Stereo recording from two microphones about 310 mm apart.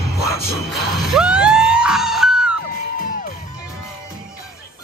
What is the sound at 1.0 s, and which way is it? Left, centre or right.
Music, centre.